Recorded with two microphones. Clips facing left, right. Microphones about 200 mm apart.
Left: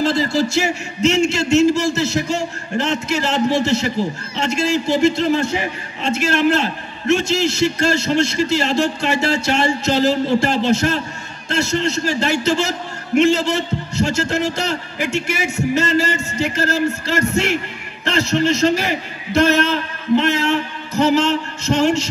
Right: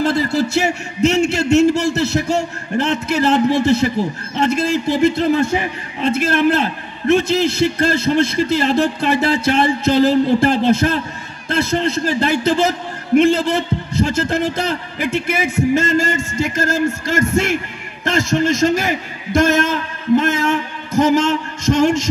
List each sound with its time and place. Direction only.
0.0 s a man's voice: 60° right (ahead or behind)